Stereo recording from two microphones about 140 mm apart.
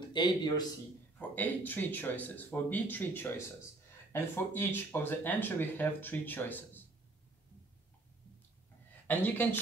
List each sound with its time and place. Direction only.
0.1 s a man's voice: 30° left (ahead or behind)
1.3 s speech: 10° left (ahead or behind)
9.0 s a woman's voice: 15° left (ahead or behind)